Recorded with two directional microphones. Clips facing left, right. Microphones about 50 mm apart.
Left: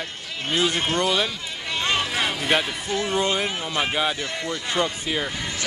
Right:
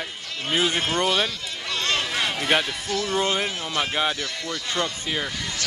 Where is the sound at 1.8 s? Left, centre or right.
Centre.